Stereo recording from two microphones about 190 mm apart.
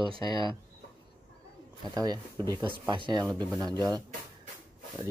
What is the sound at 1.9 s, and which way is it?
Cutlery, 20° right (ahead or behind).